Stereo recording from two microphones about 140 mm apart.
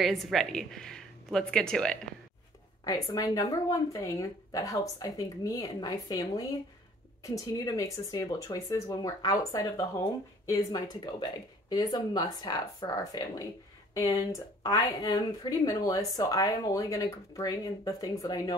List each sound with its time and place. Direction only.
0.0 s speech: centre (ahead or behind)
2.8 s speech: 25° left (ahead or behind)